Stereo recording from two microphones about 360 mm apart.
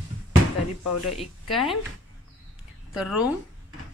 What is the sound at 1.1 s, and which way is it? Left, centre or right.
Speech, centre.